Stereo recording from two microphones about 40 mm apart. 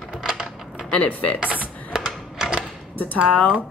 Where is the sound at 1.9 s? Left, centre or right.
Centre.